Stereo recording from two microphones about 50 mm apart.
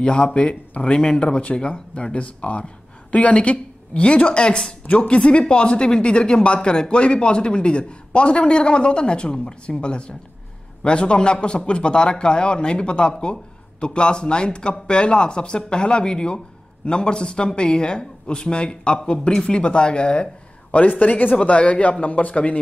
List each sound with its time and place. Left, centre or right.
0.0 s a man's voice: centre